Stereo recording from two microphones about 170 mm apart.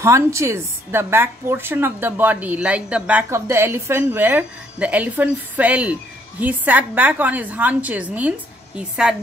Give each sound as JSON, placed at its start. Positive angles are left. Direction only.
{"t": 0.0, "sound": "a woman's voice", "side_deg": -15}